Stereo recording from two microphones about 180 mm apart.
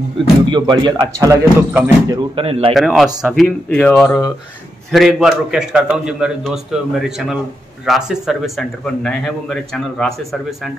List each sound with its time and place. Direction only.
0.5 s speech: 25° right (ahead or behind)
2.3 s speech: 30° right (ahead or behind)
2.7 s a man's voice: centre (ahead or behind)
3.4 s a man's voice: 10° left (ahead or behind)